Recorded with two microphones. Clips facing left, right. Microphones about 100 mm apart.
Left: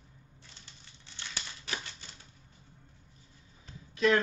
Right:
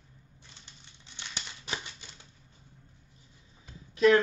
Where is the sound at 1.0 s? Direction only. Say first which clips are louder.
Even; 20° right (ahead or behind).